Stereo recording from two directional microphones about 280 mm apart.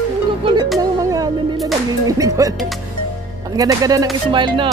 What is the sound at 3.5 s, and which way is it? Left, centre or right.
Speech, centre.